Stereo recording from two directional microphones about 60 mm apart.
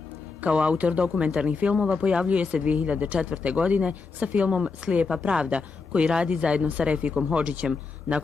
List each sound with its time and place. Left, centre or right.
0.4 s speech: centre